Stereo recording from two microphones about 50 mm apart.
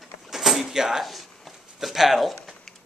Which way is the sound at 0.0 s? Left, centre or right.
Centre.